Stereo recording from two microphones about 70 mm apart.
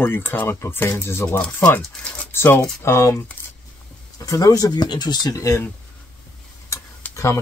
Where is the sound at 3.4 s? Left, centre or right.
Left.